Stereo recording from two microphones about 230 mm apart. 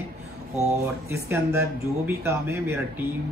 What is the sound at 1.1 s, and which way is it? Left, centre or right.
Speech, centre.